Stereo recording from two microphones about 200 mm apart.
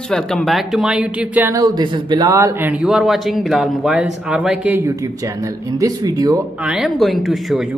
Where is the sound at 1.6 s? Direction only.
20° right (ahead or behind).